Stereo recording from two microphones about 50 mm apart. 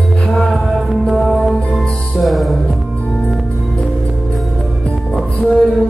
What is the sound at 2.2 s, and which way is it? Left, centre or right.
Music, centre.